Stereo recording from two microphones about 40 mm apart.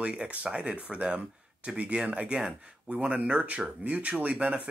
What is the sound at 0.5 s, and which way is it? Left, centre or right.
Speech, right.